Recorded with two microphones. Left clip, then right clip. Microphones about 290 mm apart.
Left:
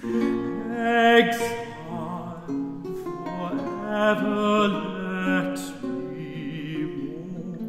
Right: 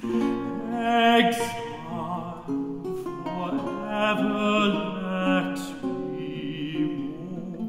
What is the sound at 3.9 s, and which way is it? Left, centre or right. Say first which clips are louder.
Music: left 3 dB; left.